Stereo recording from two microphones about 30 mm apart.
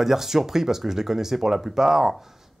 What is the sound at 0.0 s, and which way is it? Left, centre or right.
Speech, centre.